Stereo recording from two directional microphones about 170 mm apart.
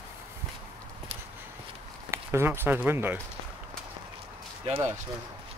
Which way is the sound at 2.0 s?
15° right (ahead or behind).